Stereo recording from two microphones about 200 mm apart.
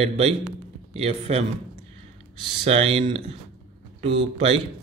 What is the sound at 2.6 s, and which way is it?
A man's voice, 30° right (ahead or behind).